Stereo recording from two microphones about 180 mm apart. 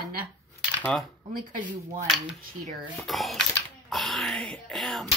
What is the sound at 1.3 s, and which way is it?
Speech, 50° right (ahead or behind).